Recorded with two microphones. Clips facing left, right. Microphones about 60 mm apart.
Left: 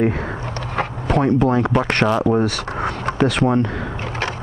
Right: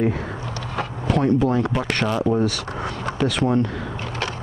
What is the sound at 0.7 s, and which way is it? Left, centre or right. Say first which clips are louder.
Speech: left 3 dB; left.